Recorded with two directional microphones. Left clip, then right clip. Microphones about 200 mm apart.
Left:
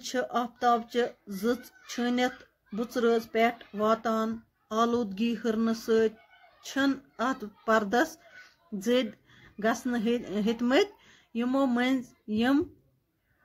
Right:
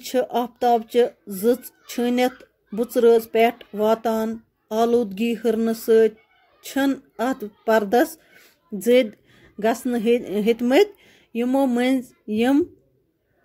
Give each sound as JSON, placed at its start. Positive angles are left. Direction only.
{"t": 0.0, "sound": "speech", "side_deg": -20}